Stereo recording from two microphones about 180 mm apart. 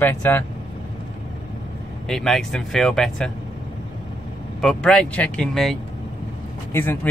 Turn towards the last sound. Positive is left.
turn(degrees=10)  # may be behind; listen again after turning